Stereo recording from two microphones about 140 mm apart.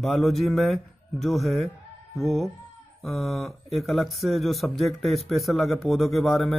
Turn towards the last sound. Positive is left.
turn(degrees=0)  # may be behind; listen again after turning